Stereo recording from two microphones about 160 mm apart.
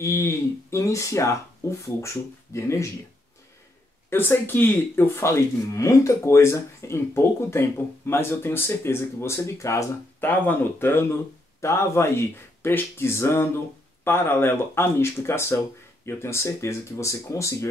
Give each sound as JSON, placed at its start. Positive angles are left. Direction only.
{"t": 0.0, "sound": "speech", "side_deg": 15}
{"t": 4.1, "sound": "speech", "side_deg": 15}